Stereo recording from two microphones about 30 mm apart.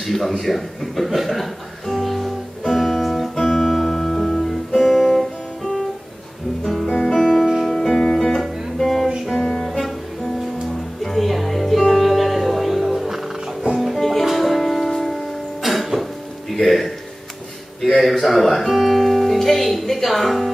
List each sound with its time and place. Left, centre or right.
0.0 s a man's voice: centre
2.0 s music: centre
4.5 s guitar: centre
7.1 s music: centre
8.8 s music: centre
9.4 s music: left
9.7 s music: centre
11.1 s music: centre
13.9 s music: centre